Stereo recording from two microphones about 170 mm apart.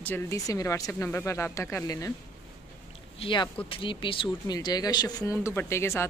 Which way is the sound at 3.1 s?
30° left (ahead or behind).